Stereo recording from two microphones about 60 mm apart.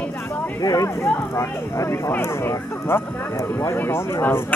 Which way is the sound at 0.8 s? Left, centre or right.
Left.